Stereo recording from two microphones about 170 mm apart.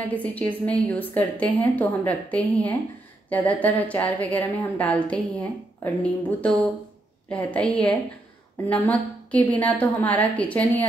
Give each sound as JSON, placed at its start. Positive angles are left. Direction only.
{"t": 0.0, "sound": "a woman's voice", "side_deg": 10}